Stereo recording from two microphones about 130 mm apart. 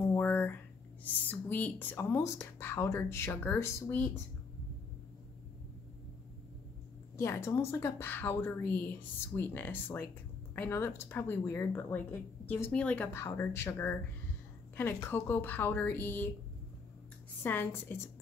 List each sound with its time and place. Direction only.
0.0 s a sound: 15° left (ahead or behind)
1.0 s speech: 15° left (ahead or behind)
7.2 s speech: 20° left (ahead or behind)
17.4 s speech: 15° left (ahead or behind)